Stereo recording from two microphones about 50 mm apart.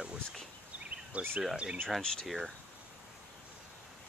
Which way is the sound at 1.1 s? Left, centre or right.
Right.